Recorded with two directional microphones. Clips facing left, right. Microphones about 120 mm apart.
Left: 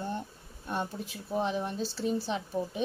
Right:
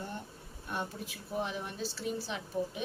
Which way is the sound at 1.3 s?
30° left (ahead or behind).